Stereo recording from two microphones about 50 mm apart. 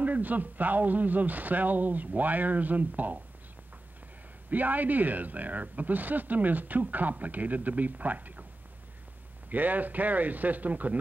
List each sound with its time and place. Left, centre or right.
0.0 s a man's voice: right
4.5 s a man's voice: right
9.5 s a man's voice: right